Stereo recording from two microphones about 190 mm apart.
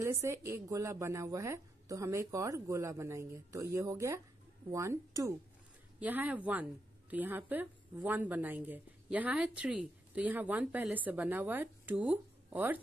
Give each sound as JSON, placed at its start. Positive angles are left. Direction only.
{"t": 0.0, "sound": "a woman's voice", "side_deg": -15}